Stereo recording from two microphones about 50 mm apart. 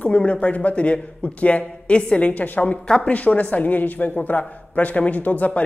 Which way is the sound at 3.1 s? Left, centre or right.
Left.